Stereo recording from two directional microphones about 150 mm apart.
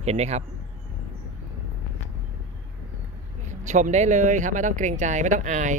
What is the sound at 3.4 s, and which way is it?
Speech, 55° right (ahead or behind).